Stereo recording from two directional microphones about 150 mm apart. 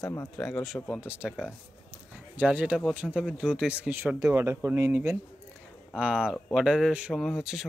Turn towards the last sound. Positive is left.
turn(degrees=0)  # may be behind; listen again after turning